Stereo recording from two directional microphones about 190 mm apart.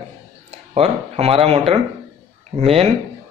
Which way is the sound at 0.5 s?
35° right (ahead or behind).